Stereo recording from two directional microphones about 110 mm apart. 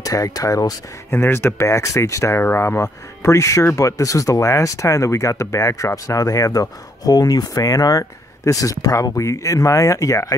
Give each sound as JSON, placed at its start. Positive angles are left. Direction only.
{"t": 0.0, "sound": "speech", "side_deg": 35}
{"t": 1.1, "sound": "speech", "side_deg": 20}